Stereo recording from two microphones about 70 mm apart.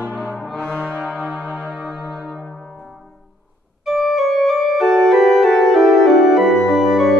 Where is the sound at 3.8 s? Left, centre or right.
Centre.